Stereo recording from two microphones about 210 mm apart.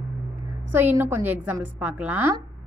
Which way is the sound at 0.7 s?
10° right (ahead or behind).